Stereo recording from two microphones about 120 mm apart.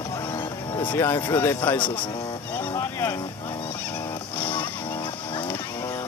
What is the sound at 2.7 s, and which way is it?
Sheep, 20° left (ahead or behind).